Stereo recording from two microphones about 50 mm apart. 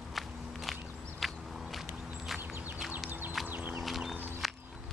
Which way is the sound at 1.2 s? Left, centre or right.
Centre.